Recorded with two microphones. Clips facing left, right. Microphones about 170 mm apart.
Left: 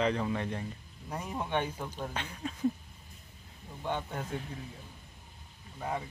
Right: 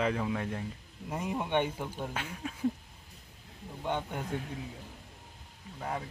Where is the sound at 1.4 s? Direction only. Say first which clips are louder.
Right 2 dB; 15° right (ahead or behind).